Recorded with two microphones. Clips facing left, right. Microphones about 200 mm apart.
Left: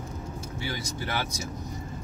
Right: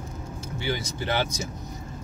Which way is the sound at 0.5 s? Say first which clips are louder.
Right 6 dB; 25° right (ahead or behind).